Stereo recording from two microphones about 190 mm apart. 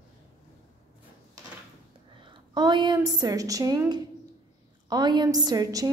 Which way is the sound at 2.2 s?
25° right (ahead or behind).